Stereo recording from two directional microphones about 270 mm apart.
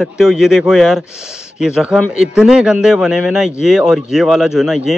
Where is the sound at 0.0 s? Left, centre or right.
Centre.